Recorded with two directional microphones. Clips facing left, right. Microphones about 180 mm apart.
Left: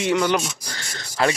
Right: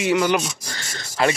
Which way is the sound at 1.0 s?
20° right (ahead or behind).